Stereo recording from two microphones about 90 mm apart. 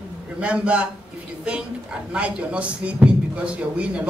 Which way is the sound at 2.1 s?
10° right (ahead or behind).